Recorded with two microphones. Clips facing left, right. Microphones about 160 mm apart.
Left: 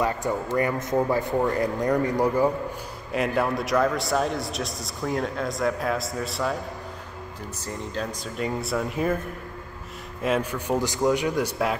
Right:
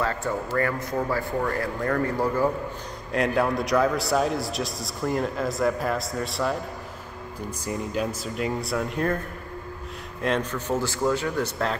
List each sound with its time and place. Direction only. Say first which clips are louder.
0.0 s a man's voice: left 2 dB; 15° left (ahead or behind)
3.1 s a man's voice: right 1 dB; centre (ahead or behind)
7.6 s a man's voice: right 3 dB; 10° right (ahead or behind)
10.2 s a man's voice: left 1 dB; 10° left (ahead or behind)